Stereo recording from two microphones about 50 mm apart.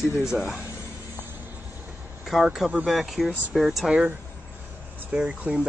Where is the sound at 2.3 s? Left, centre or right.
Centre.